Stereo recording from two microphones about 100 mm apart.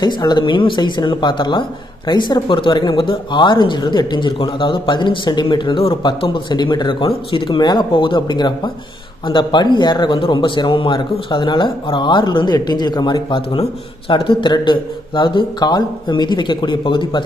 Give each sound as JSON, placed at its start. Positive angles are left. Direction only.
{"t": 0.0, "sound": "speech", "side_deg": 45}